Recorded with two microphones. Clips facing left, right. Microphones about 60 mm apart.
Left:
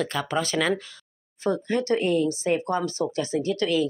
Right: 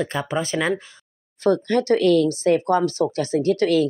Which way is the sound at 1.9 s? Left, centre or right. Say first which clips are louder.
Right 6 dB; right.